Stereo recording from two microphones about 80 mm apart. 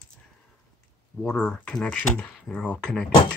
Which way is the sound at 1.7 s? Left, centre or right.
Centre.